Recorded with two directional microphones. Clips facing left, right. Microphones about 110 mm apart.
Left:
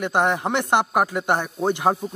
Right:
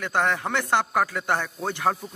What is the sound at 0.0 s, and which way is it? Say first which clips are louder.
Speech: left 4 dB; 20° left (ahead or behind).